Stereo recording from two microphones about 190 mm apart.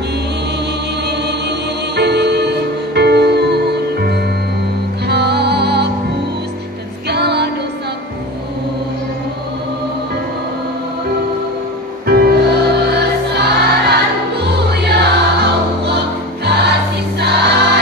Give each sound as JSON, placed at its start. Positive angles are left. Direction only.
{"t": 2.0, "sound": "music", "side_deg": -60}
{"t": 7.1, "sound": "music", "side_deg": -60}
{"t": 12.1, "sound": "music", "side_deg": -55}